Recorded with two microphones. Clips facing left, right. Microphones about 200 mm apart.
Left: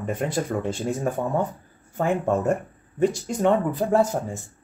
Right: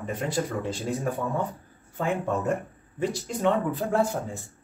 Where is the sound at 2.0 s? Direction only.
50° left (ahead or behind).